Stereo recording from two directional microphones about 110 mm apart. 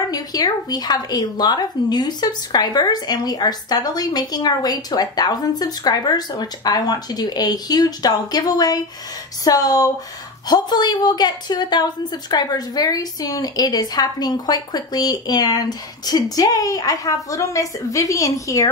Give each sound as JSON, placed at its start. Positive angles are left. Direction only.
{"t": 0.1, "sound": "a woman's voice", "side_deg": 35}